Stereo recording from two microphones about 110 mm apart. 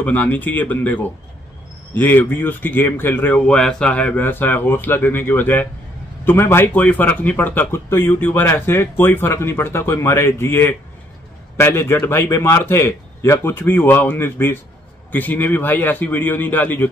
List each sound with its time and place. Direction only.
0.0 s a man's voice: 15° left (ahead or behind)